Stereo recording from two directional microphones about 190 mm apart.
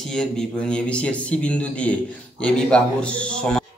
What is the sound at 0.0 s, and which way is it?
A man's voice, 5° left (ahead or behind).